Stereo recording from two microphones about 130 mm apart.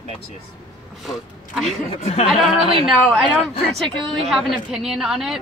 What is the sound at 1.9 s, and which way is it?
Speech, 50° left (ahead or behind).